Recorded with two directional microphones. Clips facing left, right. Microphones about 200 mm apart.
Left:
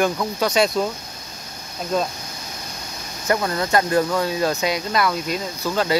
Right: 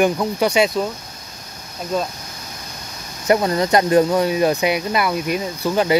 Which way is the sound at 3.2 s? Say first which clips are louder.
Right 5 dB; 20° right (ahead or behind).